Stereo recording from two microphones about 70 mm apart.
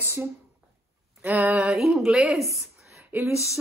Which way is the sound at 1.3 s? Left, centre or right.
Right.